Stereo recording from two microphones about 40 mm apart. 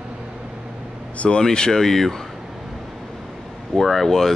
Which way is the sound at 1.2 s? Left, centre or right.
Left.